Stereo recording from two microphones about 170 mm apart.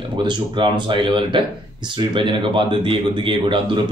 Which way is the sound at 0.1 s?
25° right (ahead or behind).